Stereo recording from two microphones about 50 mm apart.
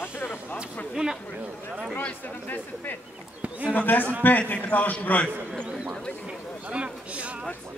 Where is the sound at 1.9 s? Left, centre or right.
Left.